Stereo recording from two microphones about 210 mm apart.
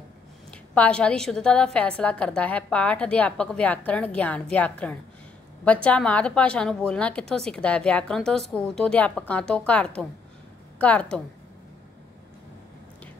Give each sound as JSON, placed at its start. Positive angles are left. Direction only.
{"t": 0.5, "sound": "a woman's voice", "side_deg": 5}